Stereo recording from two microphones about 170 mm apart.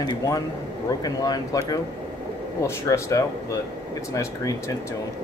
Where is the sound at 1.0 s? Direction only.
25° left (ahead or behind).